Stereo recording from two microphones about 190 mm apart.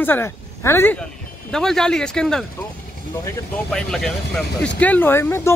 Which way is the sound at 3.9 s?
5° left (ahead or behind).